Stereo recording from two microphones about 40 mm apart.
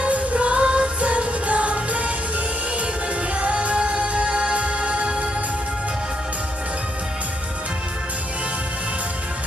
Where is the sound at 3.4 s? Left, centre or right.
Right.